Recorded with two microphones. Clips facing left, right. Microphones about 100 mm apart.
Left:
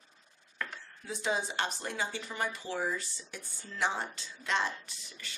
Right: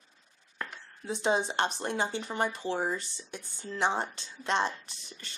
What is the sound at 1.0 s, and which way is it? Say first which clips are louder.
Speech: right 5 dB; 25° right (ahead or behind).